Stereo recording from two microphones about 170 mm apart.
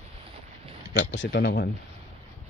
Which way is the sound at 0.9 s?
90° left.